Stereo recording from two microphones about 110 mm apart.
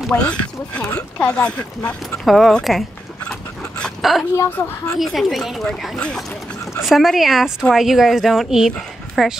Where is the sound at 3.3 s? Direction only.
5° left (ahead or behind).